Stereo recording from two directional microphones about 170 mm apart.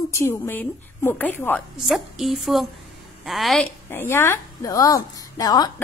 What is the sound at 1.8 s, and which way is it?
Speech, centre (ahead or behind).